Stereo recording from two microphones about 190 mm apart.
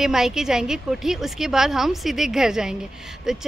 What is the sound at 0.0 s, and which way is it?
A woman's voice, centre (ahead or behind).